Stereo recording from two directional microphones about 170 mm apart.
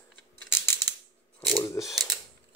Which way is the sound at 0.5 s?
15° left (ahead or behind).